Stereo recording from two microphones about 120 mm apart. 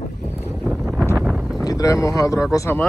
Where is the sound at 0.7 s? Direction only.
10° right (ahead or behind).